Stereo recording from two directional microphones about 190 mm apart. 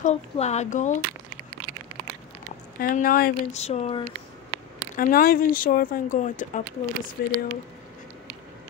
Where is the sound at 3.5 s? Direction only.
35° left (ahead or behind).